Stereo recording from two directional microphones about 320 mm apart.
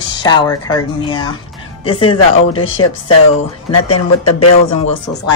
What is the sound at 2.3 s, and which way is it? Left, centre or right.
Speech, left.